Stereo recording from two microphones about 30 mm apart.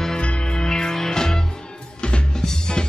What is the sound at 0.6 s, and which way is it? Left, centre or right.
Music, left.